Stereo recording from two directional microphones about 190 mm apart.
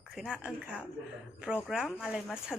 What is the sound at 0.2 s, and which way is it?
A woman's voice, 5° right (ahead or behind).